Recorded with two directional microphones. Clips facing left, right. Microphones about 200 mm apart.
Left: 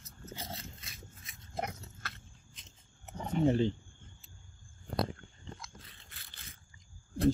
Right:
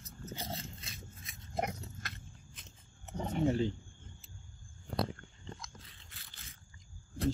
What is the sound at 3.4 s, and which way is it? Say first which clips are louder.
Speech: left 3 dB; 25° left (ahead or behind).